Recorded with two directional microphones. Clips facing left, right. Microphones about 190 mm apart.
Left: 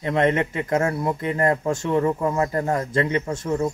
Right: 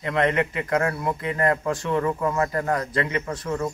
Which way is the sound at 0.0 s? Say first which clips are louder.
Left 2 dB; 25° left (ahead or behind).